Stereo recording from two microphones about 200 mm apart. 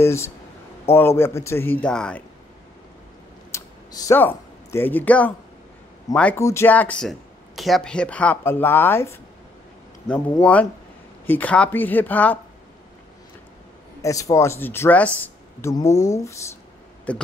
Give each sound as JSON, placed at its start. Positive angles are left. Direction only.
{"t": 0.0, "sound": "speech", "side_deg": 15}
{"t": 3.5, "sound": "a sound", "side_deg": 15}
{"t": 6.1, "sound": "speech", "side_deg": 10}
{"t": 14.0, "sound": "speech", "side_deg": 15}